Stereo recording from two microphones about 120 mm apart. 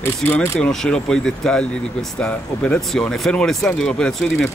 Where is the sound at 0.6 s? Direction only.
5° left (ahead or behind).